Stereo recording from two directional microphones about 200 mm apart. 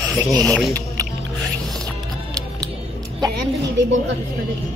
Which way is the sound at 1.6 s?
Centre (ahead or behind).